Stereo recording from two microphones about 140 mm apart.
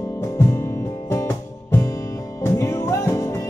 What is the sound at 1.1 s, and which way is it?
Music, 15° left (ahead or behind).